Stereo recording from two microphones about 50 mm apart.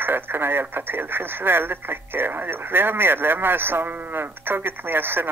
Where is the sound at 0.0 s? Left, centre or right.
Right.